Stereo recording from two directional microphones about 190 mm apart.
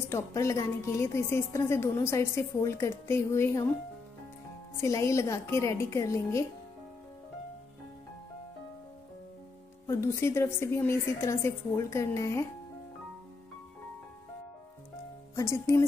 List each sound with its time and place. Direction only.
0.1 s a woman's voice: 15° left (ahead or behind)
4.7 s a woman's voice: 15° left (ahead or behind)
9.8 s a woman's voice: 15° left (ahead or behind)
15.3 s a woman's voice: 15° left (ahead or behind)